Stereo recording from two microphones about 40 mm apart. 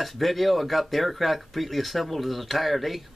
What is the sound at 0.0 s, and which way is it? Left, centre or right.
Speech, centre.